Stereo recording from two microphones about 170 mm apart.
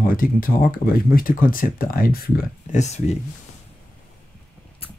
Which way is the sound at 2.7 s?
40° left (ahead or behind).